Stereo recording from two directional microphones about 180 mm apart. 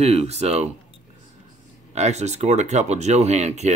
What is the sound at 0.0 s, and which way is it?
Speech, 35° right (ahead or behind).